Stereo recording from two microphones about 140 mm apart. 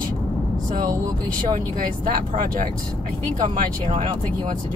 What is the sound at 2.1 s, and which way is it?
Speech, 90° right.